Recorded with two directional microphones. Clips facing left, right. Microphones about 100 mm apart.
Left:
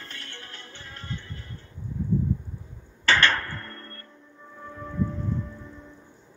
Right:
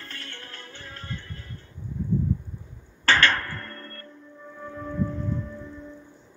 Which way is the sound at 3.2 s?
30° left (ahead or behind).